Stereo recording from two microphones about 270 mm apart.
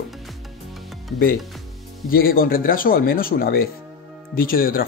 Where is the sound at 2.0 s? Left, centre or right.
Left.